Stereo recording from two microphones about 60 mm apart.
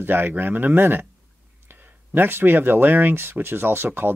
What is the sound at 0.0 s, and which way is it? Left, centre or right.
Speech, right.